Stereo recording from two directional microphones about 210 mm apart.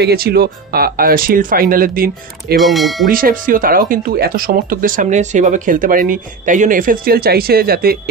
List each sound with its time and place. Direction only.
0.0 s speech: 45° right (ahead or behind)
2.5 s speech: centre (ahead or behind)
3.1 s speech: 40° right (ahead or behind)